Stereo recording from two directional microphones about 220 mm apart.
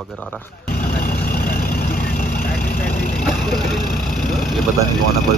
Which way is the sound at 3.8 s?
40° left (ahead or behind).